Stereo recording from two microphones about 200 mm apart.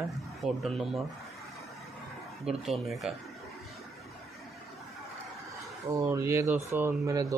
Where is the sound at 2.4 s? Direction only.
Centre (ahead or behind).